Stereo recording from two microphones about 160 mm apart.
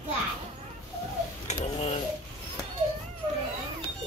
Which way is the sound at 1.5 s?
40° left (ahead or behind).